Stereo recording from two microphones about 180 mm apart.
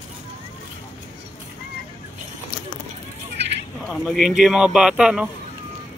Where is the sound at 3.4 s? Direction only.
70° right (ahead or behind).